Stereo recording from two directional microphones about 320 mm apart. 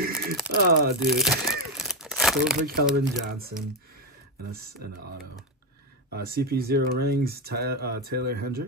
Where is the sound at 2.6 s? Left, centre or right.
Right.